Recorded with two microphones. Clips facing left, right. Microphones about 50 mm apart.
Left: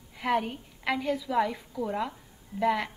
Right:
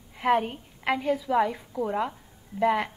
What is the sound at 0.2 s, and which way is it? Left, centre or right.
A woman's voice, centre.